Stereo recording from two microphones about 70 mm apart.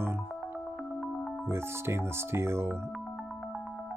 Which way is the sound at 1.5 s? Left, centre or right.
Right.